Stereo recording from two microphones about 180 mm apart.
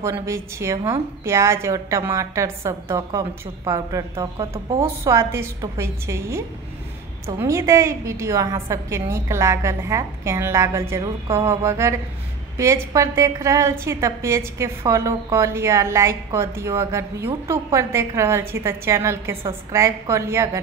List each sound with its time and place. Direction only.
0.0 s a woman's voice: 15° right (ahead or behind)